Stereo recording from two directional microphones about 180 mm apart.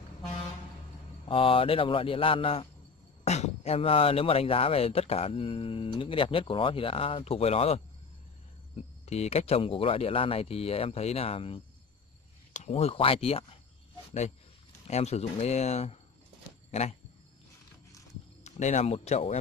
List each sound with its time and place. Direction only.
1.3 s speech: 30° left (ahead or behind)
9.0 s speech: 35° left (ahead or behind)
14.9 s speech: 35° left (ahead or behind)
18.4 s speech: 40° left (ahead or behind)